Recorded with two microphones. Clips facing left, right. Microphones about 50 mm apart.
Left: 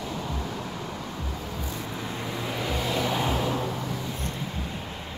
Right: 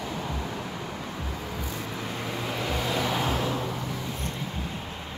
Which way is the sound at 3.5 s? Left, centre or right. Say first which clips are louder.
Left 1 dB; centre.